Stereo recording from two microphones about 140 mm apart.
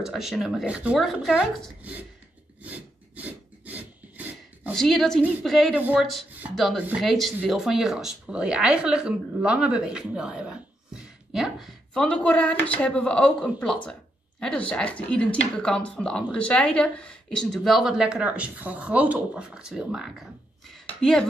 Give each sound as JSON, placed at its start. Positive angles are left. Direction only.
{"t": 0.0, "sound": "speech", "side_deg": 0}
{"t": 2.6, "sound": "filing", "side_deg": -10}
{"t": 4.7, "sound": "speech", "side_deg": 0}
{"t": 14.7, "sound": "speech", "side_deg": 10}